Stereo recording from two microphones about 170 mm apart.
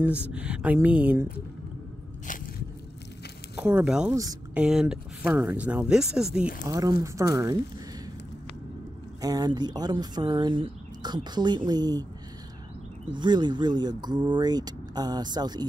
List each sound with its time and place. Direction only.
0.3 s speech: 5° right (ahead or behind)
3.5 s speech: 10° right (ahead or behind)
4.1 s speech: 20° right (ahead or behind)
4.6 s speech: 5° right (ahead or behind)
6.7 s speech: 20° right (ahead or behind)
9.2 s speech: 20° right (ahead or behind)
13.1 s speech: 25° right (ahead or behind)